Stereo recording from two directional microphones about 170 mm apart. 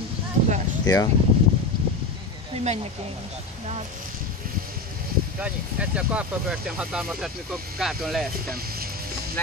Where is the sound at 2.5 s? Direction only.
40° right (ahead or behind).